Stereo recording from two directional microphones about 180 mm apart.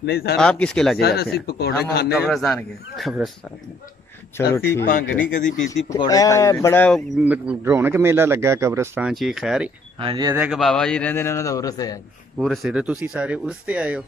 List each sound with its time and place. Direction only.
0.0 s speech: 65° left (ahead or behind)
0.4 s speech: 5° left (ahead or behind)
0.9 s speech: 60° left (ahead or behind)
2.2 s speech: 5° left (ahead or behind)
4.4 s speech: 15° left (ahead or behind)
7.2 s speech: 10° right (ahead or behind)
9.1 s speech: centre (ahead or behind)
9.9 s speech: 25° right (ahead or behind)
10.4 s speech: centre (ahead or behind); by 12.0 s 20° left (ahead or behind)
12.4 s speech: centre (ahead or behind)